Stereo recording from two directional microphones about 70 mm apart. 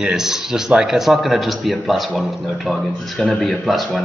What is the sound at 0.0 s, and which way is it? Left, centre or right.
A man's voice, centre.